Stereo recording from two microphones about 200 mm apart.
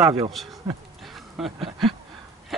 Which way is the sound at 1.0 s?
Centre (ahead or behind).